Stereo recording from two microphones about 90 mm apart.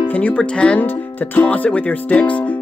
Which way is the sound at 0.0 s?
15° left (ahead or behind).